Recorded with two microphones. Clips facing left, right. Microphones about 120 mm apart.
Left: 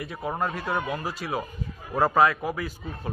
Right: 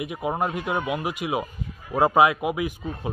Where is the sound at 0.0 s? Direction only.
15° right (ahead or behind).